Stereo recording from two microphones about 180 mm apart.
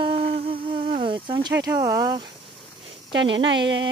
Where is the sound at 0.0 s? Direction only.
30° right (ahead or behind).